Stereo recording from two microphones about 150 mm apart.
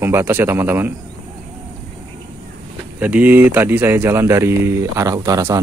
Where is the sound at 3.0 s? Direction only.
10° right (ahead or behind).